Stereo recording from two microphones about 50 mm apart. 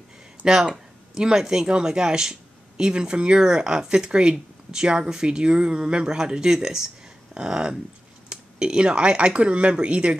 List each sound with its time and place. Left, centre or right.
0.5 s speech: centre